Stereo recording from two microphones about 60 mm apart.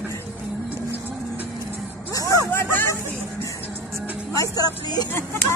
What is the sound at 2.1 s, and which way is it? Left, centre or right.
Music, left.